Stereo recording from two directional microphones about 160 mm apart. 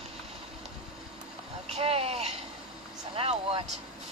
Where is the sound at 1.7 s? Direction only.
40° right (ahead or behind).